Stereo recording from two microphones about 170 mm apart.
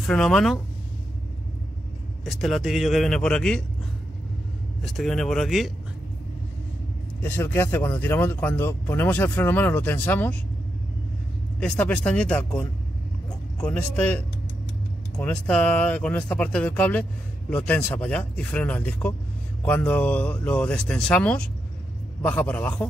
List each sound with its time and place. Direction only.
0.0 s a man's voice: 5° left (ahead or behind)
2.2 s a man's voice: centre (ahead or behind)
4.8 s a man's voice: centre (ahead or behind)
7.2 s speech: 10° left (ahead or behind)
11.6 s speech: 5° left (ahead or behind)